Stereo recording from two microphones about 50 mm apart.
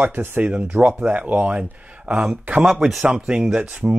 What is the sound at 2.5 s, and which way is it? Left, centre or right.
Speech, right.